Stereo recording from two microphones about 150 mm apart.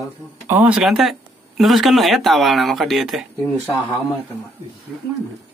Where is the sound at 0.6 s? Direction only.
10° right (ahead or behind).